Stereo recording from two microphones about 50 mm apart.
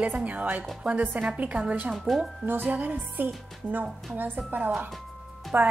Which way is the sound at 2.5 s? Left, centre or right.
Right.